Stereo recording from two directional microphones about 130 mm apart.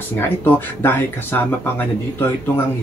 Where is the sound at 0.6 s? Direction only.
15° left (ahead or behind).